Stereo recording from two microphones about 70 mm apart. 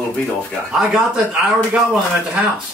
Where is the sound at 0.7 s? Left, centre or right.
Centre.